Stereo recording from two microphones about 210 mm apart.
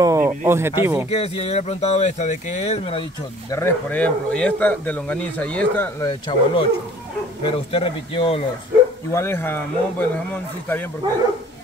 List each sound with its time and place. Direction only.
0.0 s a sound: 15° right (ahead or behind)
0.5 s speech: 10° right (ahead or behind)
1.1 s speech: 30° left (ahead or behind)
3.5 s speech: 10° left (ahead or behind); by 8.5 s 25° left (ahead or behind)
9.1 s speech: 10° left (ahead or behind)